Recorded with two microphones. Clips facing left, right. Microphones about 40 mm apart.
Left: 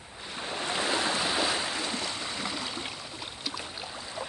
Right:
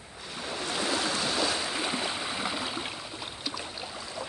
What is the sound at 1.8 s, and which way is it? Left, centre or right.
Stream, centre.